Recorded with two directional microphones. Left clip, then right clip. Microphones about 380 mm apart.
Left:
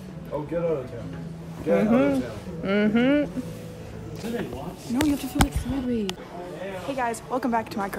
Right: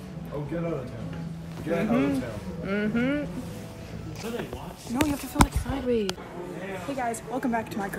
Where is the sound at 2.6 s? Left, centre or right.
Left.